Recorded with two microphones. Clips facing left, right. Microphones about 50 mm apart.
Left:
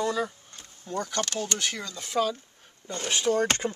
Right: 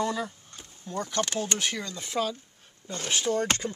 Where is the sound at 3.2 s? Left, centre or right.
Centre.